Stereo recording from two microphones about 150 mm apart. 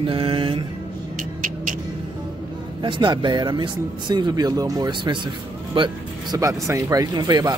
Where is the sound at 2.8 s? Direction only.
30° right (ahead or behind).